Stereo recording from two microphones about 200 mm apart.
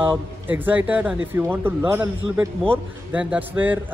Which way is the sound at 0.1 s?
10° right (ahead or behind).